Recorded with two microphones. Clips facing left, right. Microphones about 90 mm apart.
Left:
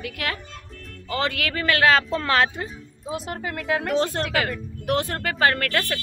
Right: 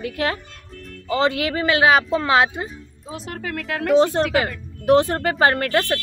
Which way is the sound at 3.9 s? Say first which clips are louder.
Right 10 dB; 20° right (ahead or behind).